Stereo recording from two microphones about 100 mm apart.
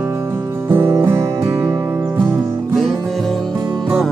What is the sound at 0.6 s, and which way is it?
Music, 25° right (ahead or behind).